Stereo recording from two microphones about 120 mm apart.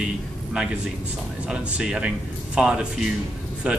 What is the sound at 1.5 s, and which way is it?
Speech, 5° right (ahead or behind).